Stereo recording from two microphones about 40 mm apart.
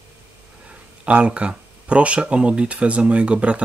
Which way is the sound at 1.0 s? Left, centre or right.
Right.